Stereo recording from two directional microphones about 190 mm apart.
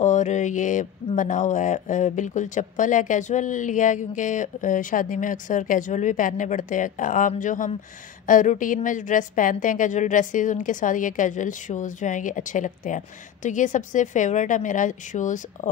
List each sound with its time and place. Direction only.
0.0 s mantra: 40° left (ahead or behind)